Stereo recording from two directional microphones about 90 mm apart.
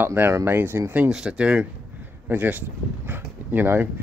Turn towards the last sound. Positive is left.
turn(degrees=-25)  # may be behind; listen again after turning